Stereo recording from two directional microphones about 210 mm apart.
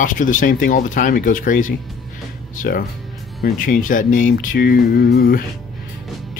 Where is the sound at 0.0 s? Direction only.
40° left (ahead or behind).